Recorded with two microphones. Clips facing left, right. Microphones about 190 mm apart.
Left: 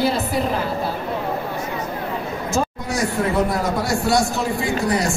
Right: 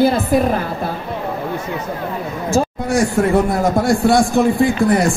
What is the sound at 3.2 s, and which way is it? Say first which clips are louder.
A man's voice: right 3 dB; 45° right (ahead or behind).